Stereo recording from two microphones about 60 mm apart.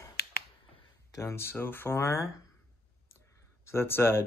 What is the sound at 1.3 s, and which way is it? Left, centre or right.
Speech, left.